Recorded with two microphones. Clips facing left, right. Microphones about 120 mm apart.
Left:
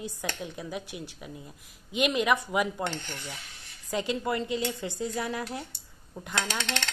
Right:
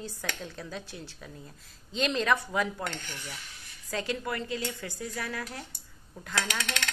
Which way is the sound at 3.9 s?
20° left (ahead or behind).